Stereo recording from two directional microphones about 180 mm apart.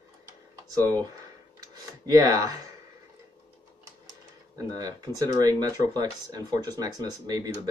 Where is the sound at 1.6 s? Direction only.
20° right (ahead or behind).